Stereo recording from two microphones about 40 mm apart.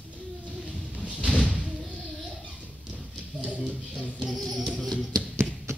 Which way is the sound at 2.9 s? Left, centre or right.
Right.